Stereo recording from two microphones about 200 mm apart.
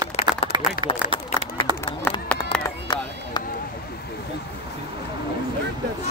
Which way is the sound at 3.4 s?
20° left (ahead or behind).